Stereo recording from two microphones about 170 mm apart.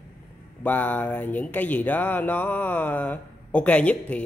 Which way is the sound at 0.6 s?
10° left (ahead or behind).